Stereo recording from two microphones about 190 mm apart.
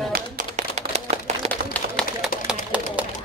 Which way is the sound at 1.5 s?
5° left (ahead or behind).